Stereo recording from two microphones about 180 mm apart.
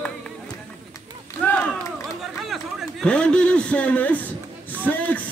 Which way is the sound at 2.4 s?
Centre (ahead or behind).